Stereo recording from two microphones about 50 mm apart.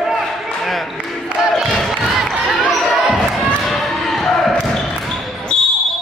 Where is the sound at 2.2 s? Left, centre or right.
Centre.